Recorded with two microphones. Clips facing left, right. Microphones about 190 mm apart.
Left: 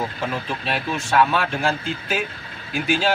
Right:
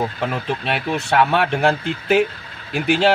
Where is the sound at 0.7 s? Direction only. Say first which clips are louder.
Right 2 dB; 65° right (ahead or behind).